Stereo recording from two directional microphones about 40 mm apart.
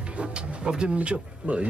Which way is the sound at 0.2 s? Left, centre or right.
Right.